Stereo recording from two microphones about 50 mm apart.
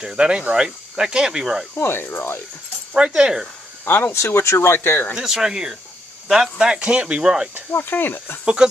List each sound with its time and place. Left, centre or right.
0.0 s speech: centre
0.7 s speech: centre
1.8 s speech: left
2.9 s speech: centre
3.8 s speech: left
4.2 s speech: left
4.6 s speech: left
5.1 s speech: centre
6.8 s speech: right
7.7 s speech: left